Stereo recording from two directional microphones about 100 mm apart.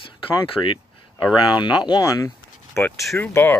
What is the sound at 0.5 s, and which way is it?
Speech, 50° left (ahead or behind).